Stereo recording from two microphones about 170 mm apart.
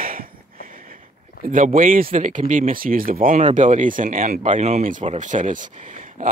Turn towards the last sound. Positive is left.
turn(degrees=-50)  # may be behind; listen again after turning